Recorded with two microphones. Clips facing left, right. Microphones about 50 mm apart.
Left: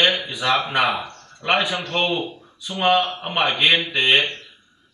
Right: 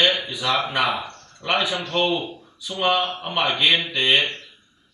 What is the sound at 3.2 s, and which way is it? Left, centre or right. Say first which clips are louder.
Speech: left 1 dB; left.